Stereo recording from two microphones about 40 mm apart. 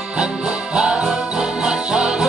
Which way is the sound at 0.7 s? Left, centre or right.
Right.